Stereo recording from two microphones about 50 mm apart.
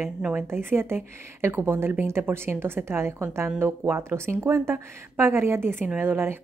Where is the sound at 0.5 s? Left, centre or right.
Right.